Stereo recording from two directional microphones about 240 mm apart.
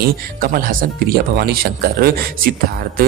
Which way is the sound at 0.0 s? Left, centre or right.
Right.